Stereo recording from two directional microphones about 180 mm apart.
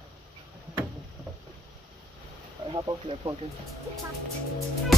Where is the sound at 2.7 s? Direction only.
25° right (ahead or behind).